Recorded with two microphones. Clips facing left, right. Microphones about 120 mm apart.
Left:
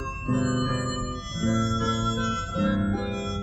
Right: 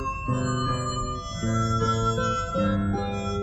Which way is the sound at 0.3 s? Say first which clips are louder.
Left 4 dB; 35° right (ahead or behind).